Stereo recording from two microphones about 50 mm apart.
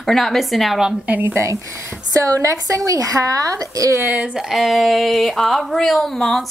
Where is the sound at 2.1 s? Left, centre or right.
Right.